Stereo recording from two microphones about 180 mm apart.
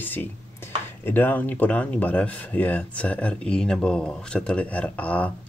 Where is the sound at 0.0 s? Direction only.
10° left (ahead or behind).